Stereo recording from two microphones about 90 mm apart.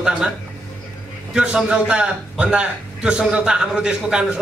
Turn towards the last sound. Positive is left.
turn(degrees=-10)  # may be behind; listen again after turning